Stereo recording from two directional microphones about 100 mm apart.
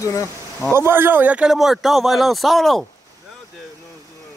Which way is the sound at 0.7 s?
25° right (ahead or behind).